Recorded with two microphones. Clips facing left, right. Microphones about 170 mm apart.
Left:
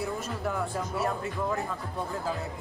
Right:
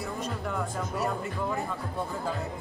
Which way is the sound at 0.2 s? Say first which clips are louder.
Left 1 dB; centre (ahead or behind).